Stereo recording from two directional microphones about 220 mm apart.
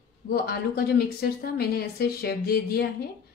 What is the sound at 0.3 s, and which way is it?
A woman's voice, 45° left (ahead or behind).